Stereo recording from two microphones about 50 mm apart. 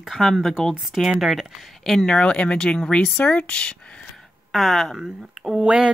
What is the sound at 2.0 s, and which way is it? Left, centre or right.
Speech, centre.